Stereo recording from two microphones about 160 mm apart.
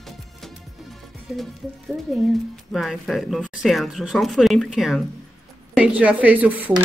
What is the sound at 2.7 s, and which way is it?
Speech, centre (ahead or behind).